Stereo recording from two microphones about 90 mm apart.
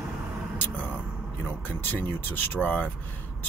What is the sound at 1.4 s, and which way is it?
Speech, 20° left (ahead or behind).